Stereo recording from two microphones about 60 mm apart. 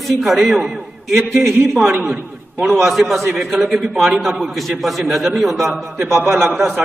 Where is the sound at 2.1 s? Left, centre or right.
Right.